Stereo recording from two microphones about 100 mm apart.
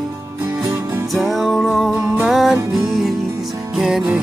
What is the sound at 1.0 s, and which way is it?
Music, centre (ahead or behind).